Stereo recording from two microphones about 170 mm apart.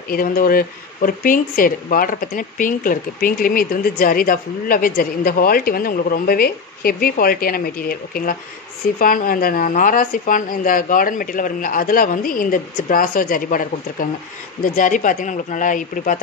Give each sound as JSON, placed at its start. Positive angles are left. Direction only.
{"t": 0.1, "sound": "speech", "side_deg": 55}